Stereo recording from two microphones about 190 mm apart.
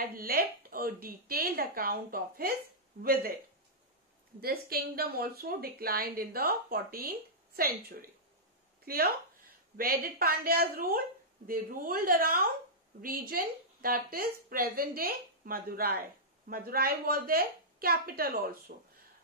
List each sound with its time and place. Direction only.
0.0 s a woman's voice: 50° right (ahead or behind)
4.4 s a woman's voice: 55° right (ahead or behind)